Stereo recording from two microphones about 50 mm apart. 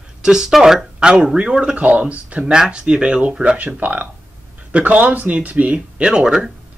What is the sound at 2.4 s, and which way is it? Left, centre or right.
Speech, centre.